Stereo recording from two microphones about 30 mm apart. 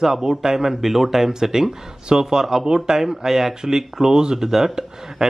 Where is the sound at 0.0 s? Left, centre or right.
Centre.